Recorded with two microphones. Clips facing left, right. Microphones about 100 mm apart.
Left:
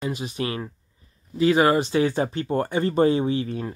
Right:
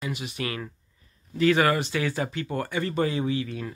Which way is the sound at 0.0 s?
30° left (ahead or behind).